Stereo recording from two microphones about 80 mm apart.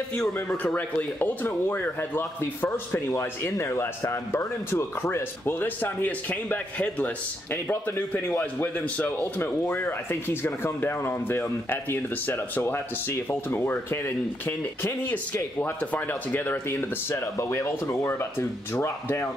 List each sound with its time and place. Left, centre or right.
0.1 s speech: centre
0.6 s speech: centre